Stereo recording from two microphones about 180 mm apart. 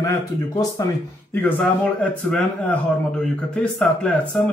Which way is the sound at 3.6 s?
5° left (ahead or behind).